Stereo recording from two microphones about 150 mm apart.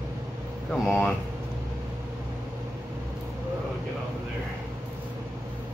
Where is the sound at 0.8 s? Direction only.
15° left (ahead or behind).